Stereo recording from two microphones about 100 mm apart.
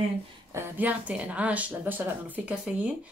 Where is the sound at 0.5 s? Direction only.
20° right (ahead or behind).